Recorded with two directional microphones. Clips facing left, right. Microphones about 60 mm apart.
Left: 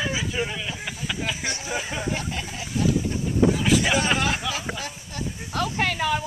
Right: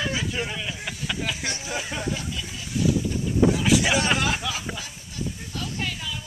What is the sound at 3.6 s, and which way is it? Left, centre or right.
Speech, centre.